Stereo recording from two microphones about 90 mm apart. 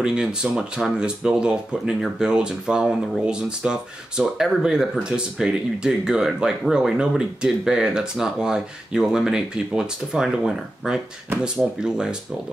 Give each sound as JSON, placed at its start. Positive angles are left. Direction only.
{"t": 0.0, "sound": "speech", "side_deg": -10}